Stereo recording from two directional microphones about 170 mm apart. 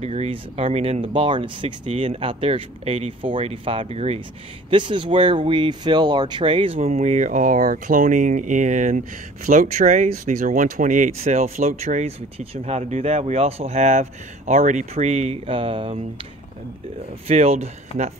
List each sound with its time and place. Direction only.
0.0 s speech: 40° right (ahead or behind)
17.3 s speech: 40° right (ahead or behind)